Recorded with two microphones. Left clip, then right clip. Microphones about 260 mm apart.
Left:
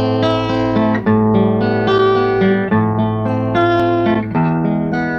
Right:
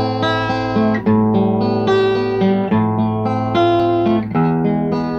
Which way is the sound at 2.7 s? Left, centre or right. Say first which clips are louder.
Left 1 dB; right.